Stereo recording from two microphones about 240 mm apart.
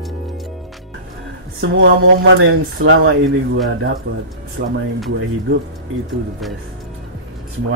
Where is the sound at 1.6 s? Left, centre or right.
Right.